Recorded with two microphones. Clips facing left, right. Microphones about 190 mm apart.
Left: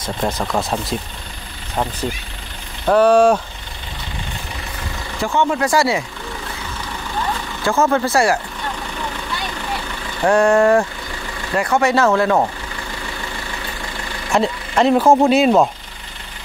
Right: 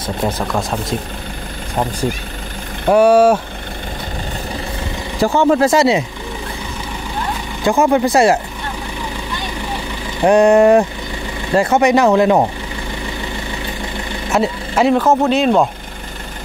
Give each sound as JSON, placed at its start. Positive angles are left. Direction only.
{"t": 0.0, "sound": "speech", "side_deg": 0}
{"t": 2.9, "sound": "speech", "side_deg": -10}
{"t": 5.2, "sound": "speech", "side_deg": -35}
{"t": 5.7, "sound": "speech", "side_deg": -20}
{"t": 7.6, "sound": "speech", "side_deg": -15}
{"t": 10.2, "sound": "speech", "side_deg": -20}
{"t": 14.3, "sound": "speech", "side_deg": -5}
{"t": 15.0, "sound": "speech", "side_deg": 10}